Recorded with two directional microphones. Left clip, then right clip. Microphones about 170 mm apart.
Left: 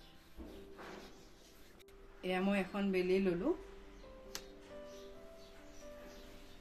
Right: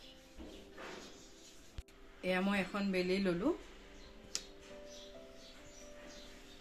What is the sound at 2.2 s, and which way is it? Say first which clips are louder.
Speech: right 1 dB; 30° right (ahead or behind).